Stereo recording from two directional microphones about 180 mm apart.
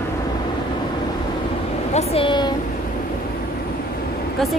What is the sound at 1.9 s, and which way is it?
Speech, 35° left (ahead or behind).